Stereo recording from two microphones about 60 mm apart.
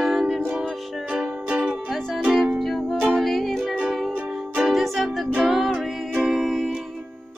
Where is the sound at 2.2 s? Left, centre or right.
Centre.